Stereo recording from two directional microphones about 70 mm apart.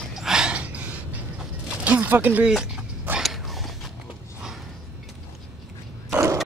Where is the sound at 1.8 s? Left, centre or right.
Right.